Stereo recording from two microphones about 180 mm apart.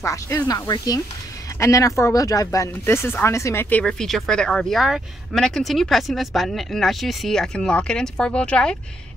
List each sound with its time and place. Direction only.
0.0 s speech: 15° left (ahead or behind)